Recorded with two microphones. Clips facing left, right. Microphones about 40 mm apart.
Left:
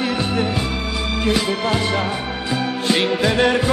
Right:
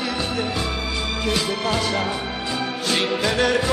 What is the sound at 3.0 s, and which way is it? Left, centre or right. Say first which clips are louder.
Music: left 3 dB; left.